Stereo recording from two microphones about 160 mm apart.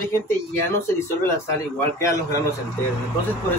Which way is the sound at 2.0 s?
20° left (ahead or behind).